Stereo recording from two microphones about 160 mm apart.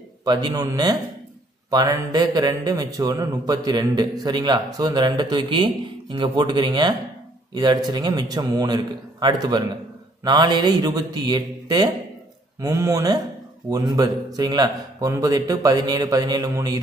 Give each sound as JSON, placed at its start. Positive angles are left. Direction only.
{"t": 0.2, "sound": "speech", "side_deg": -25}